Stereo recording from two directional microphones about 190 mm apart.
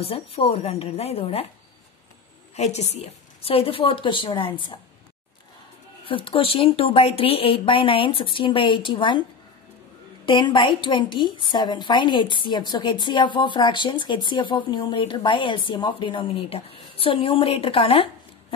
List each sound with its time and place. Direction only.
0.0 s a woman's voice: 30° left (ahead or behind)
2.5 s a woman's voice: 35° left (ahead or behind)
6.0 s a woman's voice: 25° left (ahead or behind)
10.2 s a woman's voice: 25° left (ahead or behind)